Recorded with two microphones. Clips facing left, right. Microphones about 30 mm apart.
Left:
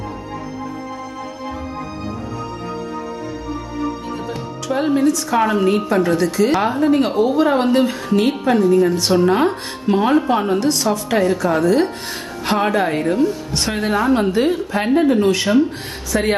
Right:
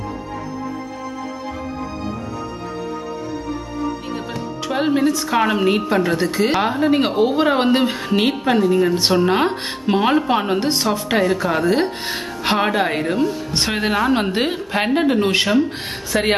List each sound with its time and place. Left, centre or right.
4.6 s speech: right
8.5 s speech: right
14.3 s a woman's voice: right